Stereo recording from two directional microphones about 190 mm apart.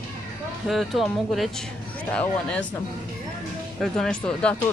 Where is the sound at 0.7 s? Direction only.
Centre (ahead or behind).